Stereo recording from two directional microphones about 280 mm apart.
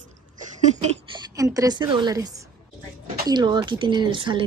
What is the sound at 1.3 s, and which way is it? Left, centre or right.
Speech, centre.